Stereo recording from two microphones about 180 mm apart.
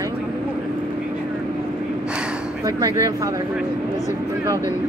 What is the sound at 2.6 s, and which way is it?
Speech, 20° right (ahead or behind).